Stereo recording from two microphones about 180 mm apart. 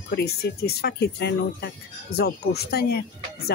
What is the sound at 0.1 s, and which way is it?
Speech, 65° left (ahead or behind).